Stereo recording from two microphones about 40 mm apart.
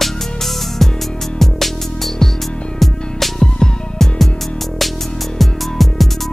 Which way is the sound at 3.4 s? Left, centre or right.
Centre.